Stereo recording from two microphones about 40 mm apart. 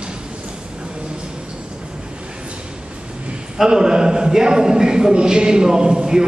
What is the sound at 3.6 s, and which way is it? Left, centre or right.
A man's voice, centre.